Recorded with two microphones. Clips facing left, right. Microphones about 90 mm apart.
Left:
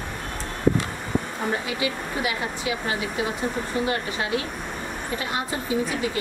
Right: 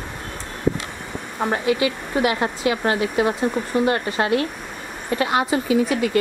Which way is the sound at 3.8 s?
50° right (ahead or behind).